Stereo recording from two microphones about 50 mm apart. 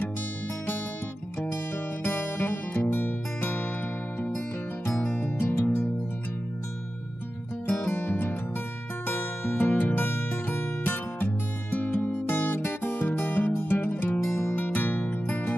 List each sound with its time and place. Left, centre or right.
2.0 s music: left
5.4 s music: left
7.6 s music: left
14.3 s music: left
14.7 s music: left